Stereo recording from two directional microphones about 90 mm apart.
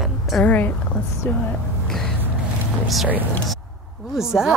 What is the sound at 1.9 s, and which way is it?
Vehicle, 5° left (ahead or behind).